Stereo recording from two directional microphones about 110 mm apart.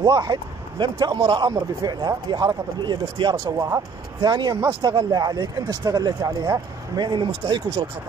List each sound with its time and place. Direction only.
0.0 s a man's voice: 35° right (ahead or behind)
3.5 s a man's voice: 30° right (ahead or behind); by 7.8 s 45° right (ahead or behind)